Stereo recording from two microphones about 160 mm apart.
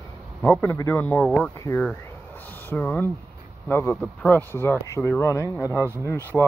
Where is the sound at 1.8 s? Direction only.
10° left (ahead or behind).